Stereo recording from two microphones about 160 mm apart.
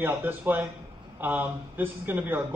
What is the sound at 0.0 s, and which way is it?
Speech, 10° right (ahead or behind).